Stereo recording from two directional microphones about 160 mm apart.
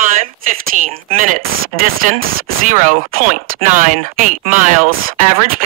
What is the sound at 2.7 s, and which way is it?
Speech, 50° right (ahead or behind).